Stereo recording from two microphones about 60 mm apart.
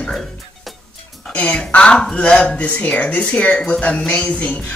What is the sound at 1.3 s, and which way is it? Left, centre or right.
Speech, left.